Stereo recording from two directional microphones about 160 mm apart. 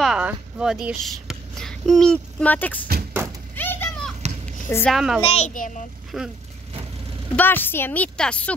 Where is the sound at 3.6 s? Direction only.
10° left (ahead or behind).